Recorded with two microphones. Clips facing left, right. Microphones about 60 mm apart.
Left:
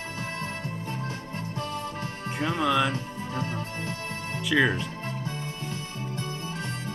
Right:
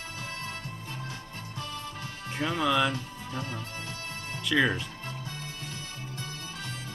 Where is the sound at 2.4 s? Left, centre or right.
Centre.